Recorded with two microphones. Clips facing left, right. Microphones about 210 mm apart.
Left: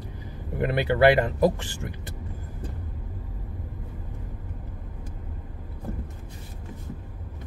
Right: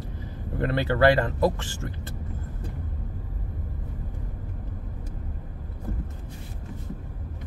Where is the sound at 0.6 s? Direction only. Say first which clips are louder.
Left 1 dB; 15° left (ahead or behind).